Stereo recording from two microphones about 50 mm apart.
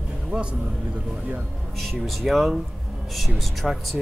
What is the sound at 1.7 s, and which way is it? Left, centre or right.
Speech, centre.